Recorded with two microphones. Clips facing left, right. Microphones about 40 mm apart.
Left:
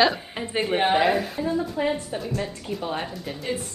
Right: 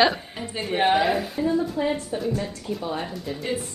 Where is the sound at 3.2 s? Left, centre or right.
Centre.